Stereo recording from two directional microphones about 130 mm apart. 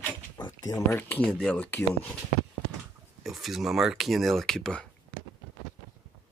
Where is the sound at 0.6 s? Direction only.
25° left (ahead or behind).